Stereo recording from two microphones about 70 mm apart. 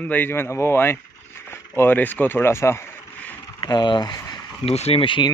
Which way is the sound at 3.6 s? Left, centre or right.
Left.